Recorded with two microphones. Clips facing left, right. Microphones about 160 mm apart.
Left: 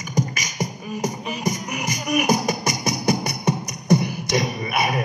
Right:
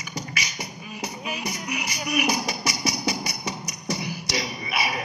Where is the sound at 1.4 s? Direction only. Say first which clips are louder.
Left 9 dB; 45° left (ahead or behind).